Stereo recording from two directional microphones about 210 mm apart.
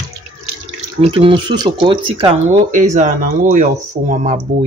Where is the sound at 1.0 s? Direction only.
25° right (ahead or behind).